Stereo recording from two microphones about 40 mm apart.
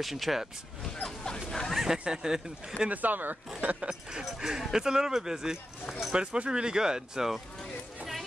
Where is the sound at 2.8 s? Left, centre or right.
Right.